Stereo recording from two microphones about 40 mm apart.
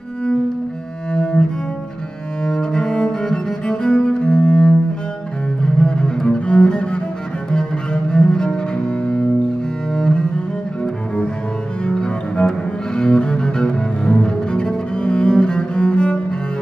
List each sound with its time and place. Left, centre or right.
1.1 s cello: left
11.8 s cello: left